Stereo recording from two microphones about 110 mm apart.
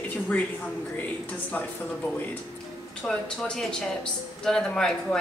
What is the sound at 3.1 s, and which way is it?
A woman's voice, 5° left (ahead or behind).